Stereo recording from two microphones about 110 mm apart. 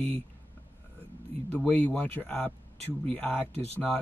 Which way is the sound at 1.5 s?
15° left (ahead or behind).